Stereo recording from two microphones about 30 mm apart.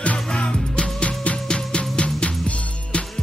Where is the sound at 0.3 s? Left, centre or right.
Left.